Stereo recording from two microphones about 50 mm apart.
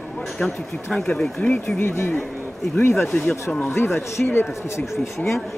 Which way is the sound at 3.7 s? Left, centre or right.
Left.